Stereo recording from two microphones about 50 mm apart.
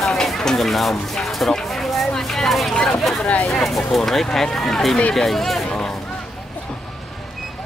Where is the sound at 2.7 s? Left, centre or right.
Centre.